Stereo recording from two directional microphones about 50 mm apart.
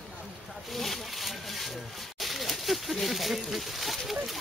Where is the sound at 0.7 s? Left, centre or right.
Centre.